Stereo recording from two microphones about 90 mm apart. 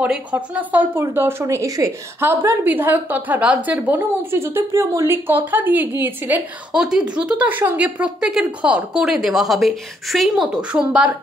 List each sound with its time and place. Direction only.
0.0 s speech: 15° right (ahead or behind)
6.7 s a woman's voice: 5° right (ahead or behind)